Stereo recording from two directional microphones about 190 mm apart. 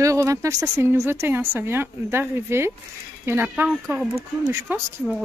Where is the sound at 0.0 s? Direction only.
15° right (ahead or behind).